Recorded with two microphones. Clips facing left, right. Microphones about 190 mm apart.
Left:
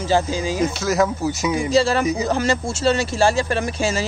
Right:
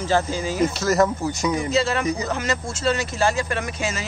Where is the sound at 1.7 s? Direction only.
35° left (ahead or behind).